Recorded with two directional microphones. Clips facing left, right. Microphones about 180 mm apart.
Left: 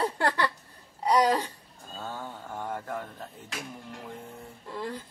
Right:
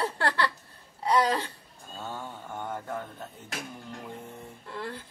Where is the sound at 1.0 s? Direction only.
15° left (ahead or behind).